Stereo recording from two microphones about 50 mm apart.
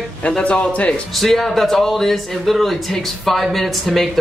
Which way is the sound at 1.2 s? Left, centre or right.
Centre.